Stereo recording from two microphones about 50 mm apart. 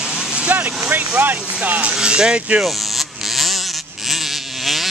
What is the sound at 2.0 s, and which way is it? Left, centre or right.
Speech, centre.